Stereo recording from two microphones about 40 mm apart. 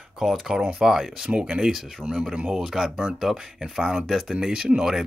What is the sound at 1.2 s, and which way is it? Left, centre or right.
Speech, right.